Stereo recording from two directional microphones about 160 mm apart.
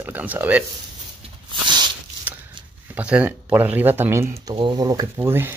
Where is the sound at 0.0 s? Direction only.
10° right (ahead or behind).